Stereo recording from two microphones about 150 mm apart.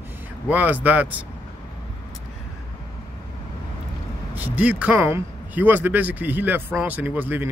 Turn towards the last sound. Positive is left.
turn(degrees=-10)  # may be behind; listen again after turning